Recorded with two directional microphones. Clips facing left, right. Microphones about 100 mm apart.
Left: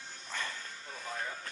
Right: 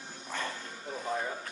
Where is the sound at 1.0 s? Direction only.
20° right (ahead or behind).